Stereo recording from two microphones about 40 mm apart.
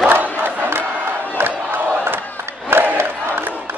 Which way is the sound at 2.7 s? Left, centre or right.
Right.